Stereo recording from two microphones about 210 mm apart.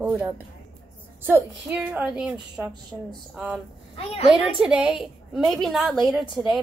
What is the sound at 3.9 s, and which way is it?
Speech, 30° left (ahead or behind).